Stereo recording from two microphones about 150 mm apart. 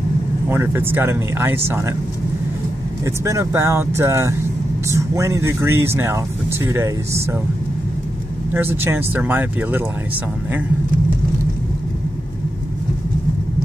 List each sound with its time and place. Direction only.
0.5 s speech: 15° right (ahead or behind)
3.3 s speech: 20° right (ahead or behind)
8.5 s speech: 15° right (ahead or behind)